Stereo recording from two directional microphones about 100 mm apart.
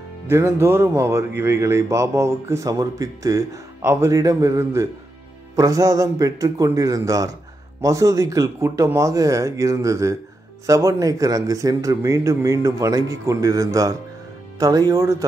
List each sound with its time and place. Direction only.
0.3 s speech: 25° right (ahead or behind)